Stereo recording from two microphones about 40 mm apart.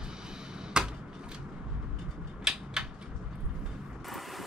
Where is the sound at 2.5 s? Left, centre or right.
Centre.